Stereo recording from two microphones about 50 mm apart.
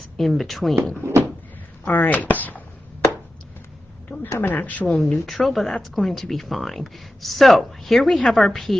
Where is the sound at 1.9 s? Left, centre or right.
Left.